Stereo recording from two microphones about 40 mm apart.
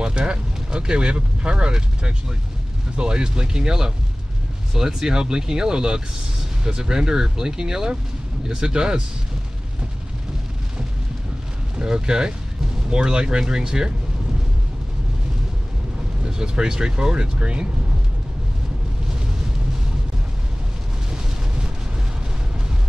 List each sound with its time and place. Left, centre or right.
0.0 s speech: right
11.8 s speech: centre
16.3 s speech: centre